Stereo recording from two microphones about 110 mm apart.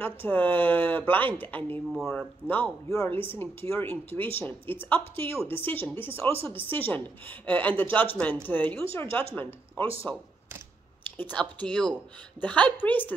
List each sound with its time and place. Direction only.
0.0 s a woman's voice: 15° left (ahead or behind)
1.9 s speech: centre (ahead or behind)
2.1 s a woman's voice: 15° left (ahead or behind)